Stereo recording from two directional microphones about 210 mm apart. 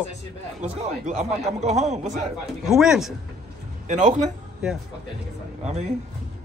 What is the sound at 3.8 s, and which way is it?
Speech, 35° right (ahead or behind).